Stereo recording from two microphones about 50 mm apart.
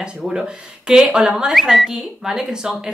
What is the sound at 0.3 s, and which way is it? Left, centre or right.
A woman's voice, centre.